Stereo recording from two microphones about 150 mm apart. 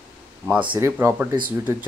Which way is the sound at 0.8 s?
15° right (ahead or behind).